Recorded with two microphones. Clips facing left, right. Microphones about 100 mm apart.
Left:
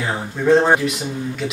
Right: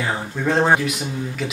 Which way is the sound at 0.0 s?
Centre (ahead or behind).